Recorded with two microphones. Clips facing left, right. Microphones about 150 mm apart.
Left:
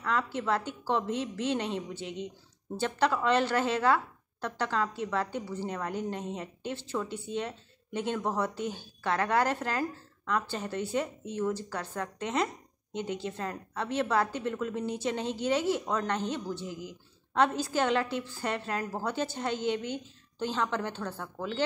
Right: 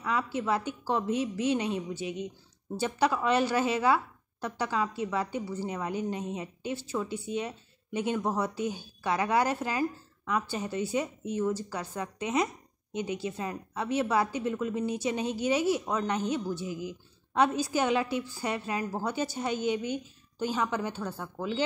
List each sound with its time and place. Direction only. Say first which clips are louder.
0.0 s a woman's voice: even; 10° right (ahead or behind)